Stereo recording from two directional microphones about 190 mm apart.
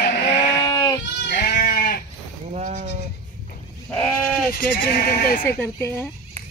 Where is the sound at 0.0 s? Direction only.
55° left (ahead or behind).